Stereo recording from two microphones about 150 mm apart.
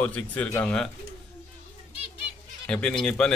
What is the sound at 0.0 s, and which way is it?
Speech, 10° left (ahead or behind).